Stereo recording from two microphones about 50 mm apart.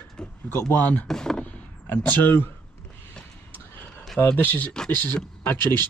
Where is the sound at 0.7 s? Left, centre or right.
Left.